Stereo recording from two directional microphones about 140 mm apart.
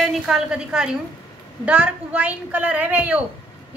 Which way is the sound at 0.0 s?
5° right (ahead or behind).